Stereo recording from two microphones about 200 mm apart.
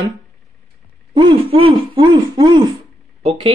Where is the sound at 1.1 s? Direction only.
25° right (ahead or behind).